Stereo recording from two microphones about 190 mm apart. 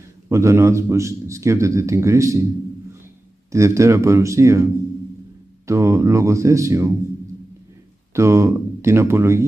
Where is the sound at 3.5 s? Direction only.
15° right (ahead or behind).